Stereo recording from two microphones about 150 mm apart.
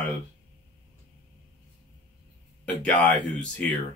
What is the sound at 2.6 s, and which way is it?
Speech, 10° left (ahead or behind).